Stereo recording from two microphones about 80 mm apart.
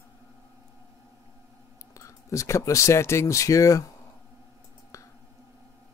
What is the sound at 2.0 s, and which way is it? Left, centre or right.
Speech, left.